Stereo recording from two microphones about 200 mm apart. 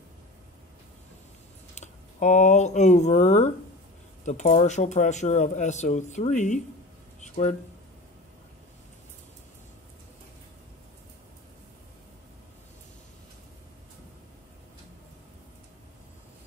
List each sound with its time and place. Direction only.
1.8 s speech: 35° left (ahead or behind)